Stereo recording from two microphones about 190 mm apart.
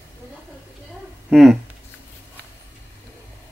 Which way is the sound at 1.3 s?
Centre (ahead or behind).